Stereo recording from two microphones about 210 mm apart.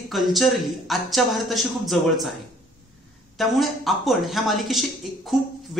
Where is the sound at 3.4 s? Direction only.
Centre (ahead or behind).